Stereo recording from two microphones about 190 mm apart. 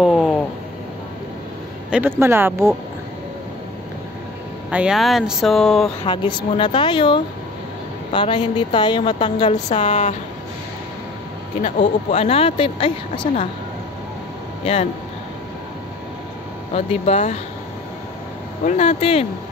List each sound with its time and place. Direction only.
0.0 s speech: centre (ahead or behind)
1.9 s speech: 10° right (ahead or behind)
4.6 s speech: 5° right (ahead or behind)
6.0 s speech: 25° left (ahead or behind)
9.5 s a woman's voice: 40° left (ahead or behind)
11.6 s speech: 35° left (ahead or behind)
14.6 s speech: 30° left (ahead or behind)
16.7 s a woman's voice: 35° left (ahead or behind)
18.6 s a woman's voice: 40° left (ahead or behind)